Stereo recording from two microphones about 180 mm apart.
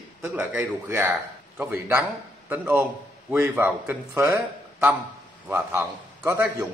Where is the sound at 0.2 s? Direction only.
10° right (ahead or behind).